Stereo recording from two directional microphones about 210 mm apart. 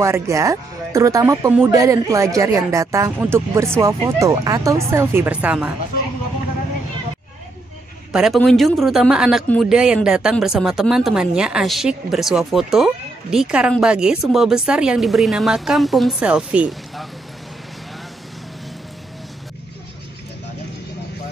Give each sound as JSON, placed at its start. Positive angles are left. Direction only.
{"t": 0.0, "sound": "speech", "side_deg": -15}
{"t": 8.1, "sound": "speech", "side_deg": 0}